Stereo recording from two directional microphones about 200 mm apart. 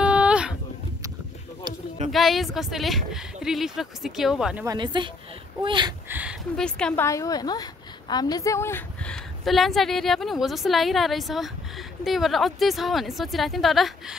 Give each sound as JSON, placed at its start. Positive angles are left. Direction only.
{"t": 0.0, "sound": "a sound", "side_deg": -5}
{"t": 1.7, "sound": "a sound", "side_deg": -20}
{"t": 2.1, "sound": "a woman's voice", "side_deg": 0}
{"t": 4.6, "sound": "speech", "side_deg": -20}
{"t": 6.0, "sound": "speech", "side_deg": -10}
{"t": 6.5, "sound": "a woman's voice", "side_deg": 5}
{"t": 7.1, "sound": "a woman's voice", "side_deg": 15}